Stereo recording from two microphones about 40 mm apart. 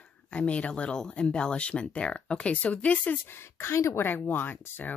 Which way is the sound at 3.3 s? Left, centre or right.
Left.